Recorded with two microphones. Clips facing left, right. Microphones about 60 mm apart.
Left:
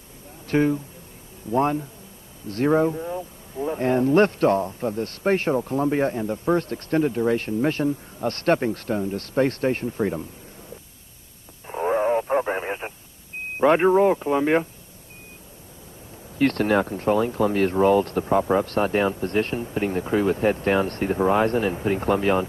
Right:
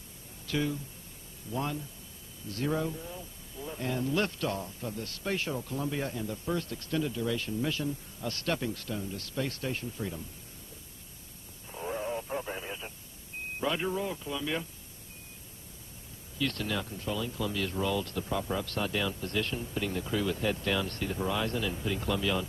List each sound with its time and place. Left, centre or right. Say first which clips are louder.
0.5 s speech: left 11 dB; left
11.6 s radio: left 13 dB; left
13.6 s speech: left 15 dB; left
16.3 s speech: left 13 dB; left